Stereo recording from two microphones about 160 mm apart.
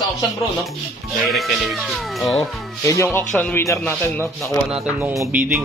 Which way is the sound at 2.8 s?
20° left (ahead or behind).